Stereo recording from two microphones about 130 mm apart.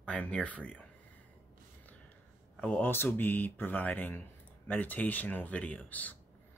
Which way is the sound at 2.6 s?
10° left (ahead or behind).